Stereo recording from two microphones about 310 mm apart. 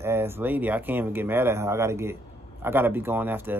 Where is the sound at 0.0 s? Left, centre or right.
Centre.